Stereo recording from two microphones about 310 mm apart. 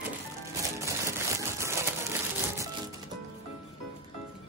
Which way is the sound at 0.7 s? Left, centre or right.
Centre.